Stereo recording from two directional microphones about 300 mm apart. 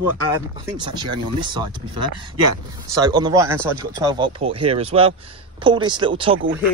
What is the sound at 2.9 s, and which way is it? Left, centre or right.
Speech, centre.